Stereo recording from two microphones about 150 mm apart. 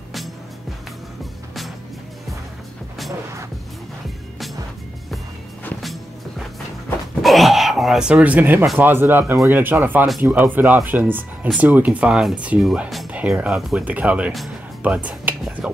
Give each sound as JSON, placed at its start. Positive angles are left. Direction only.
{"t": 7.2, "sound": "throat clearing", "side_deg": 0}
{"t": 8.7, "sound": "speech", "side_deg": -15}